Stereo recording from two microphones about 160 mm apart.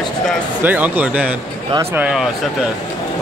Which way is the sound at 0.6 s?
10° right (ahead or behind).